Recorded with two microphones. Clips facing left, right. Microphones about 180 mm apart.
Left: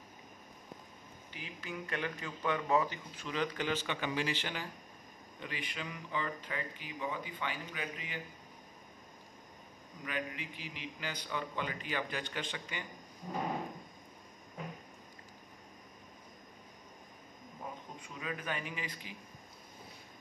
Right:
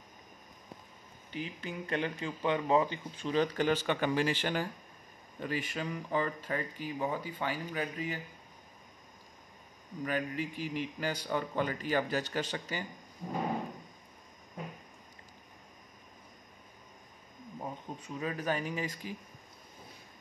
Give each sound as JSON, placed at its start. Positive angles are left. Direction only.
{"t": 1.3, "sound": "speech", "side_deg": -35}
{"t": 10.0, "sound": "speech", "side_deg": -40}
{"t": 18.0, "sound": "speech", "side_deg": -40}